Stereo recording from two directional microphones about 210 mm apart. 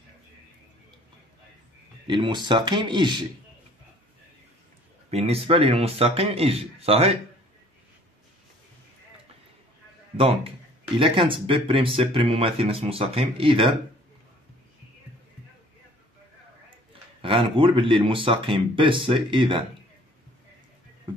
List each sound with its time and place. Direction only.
2.0 s speech: 20° right (ahead or behind)
5.1 s speech: 30° right (ahead or behind)
10.1 s speech: 25° right (ahead or behind)
17.2 s speech: 25° right (ahead or behind)